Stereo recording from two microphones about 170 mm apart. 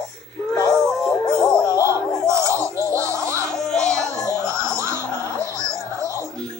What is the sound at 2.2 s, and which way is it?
Music, 15° right (ahead or behind).